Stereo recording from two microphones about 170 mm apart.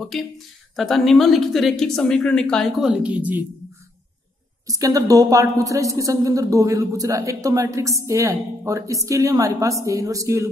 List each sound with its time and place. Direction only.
0.7 s a woman's voice: centre (ahead or behind)
4.6 s a woman's voice: 20° right (ahead or behind)